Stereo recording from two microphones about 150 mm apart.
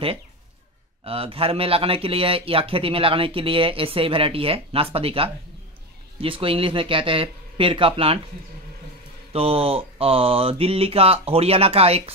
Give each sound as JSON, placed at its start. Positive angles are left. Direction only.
{"t": 1.0, "sound": "a man's voice", "side_deg": -40}
{"t": 9.3, "sound": "a man's voice", "side_deg": -40}